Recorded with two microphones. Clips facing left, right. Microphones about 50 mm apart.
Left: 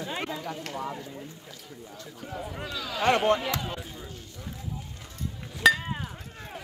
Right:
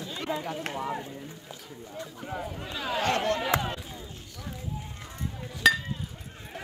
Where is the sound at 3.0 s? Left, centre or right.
Left.